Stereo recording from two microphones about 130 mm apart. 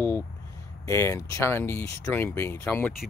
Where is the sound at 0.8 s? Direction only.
20° left (ahead or behind).